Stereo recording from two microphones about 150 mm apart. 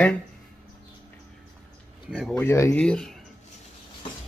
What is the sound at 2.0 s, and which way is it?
Speech, 5° right (ahead or behind).